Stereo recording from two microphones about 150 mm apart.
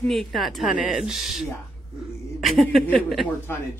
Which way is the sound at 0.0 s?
Centre (ahead or behind).